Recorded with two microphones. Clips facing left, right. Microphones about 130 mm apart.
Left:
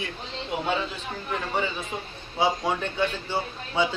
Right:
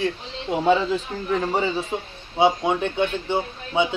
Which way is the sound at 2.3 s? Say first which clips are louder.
Right 5 dB; 25° right (ahead or behind).